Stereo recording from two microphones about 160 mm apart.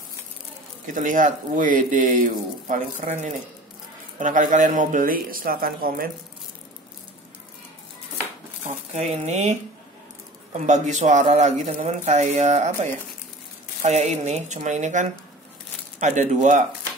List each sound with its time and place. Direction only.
0.8 s speech: 55° right (ahead or behind)
8.6 s speech: 40° right (ahead or behind)
10.6 s speech: 50° right (ahead or behind)